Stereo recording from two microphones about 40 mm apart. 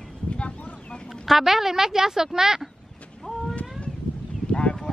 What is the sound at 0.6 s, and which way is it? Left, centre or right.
Chicken, left.